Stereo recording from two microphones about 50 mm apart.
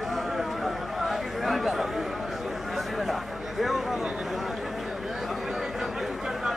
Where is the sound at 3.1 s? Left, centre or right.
Centre.